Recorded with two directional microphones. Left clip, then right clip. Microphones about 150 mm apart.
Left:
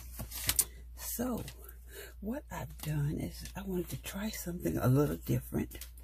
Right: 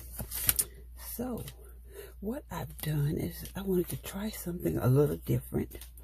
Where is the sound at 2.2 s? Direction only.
20° right (ahead or behind).